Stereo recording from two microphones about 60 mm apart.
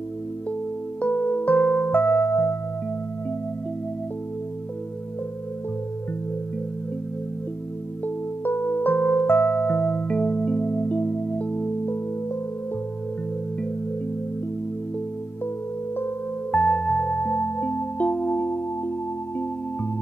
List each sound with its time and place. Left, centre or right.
1.0 s music: left
8.5 s music: left
16.5 s music: centre